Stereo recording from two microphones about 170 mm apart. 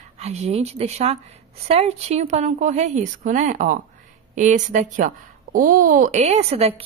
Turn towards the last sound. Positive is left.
turn(degrees=-35)  # may be behind; listen again after turning